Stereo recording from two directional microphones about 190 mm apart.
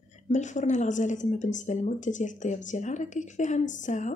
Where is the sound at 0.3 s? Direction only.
40° left (ahead or behind).